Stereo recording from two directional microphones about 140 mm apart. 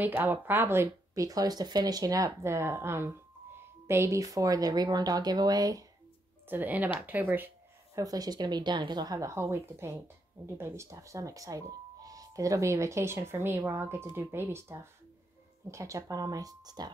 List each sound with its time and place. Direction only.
0.0 s speech: 10° right (ahead or behind)
6.4 s speech: 15° right (ahead or behind)
7.1 s a sound: 15° right (ahead or behind)
8.0 s speech: 25° right (ahead or behind)